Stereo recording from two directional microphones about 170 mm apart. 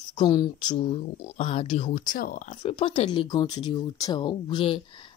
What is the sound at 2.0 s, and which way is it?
Speech, 55° left (ahead or behind).